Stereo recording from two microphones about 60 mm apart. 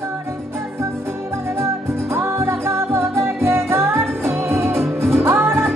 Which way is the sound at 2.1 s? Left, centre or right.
Right.